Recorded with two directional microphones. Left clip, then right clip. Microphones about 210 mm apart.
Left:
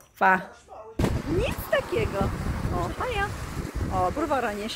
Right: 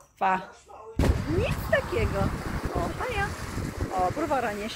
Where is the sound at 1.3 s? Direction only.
15° left (ahead or behind).